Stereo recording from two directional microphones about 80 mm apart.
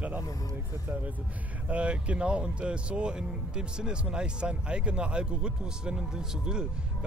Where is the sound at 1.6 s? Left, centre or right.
Centre.